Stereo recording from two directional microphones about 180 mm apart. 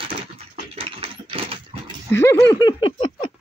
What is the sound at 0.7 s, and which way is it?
Dog, 30° right (ahead or behind).